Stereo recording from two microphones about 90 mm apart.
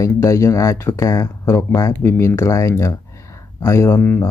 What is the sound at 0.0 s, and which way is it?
Speech, 35° left (ahead or behind).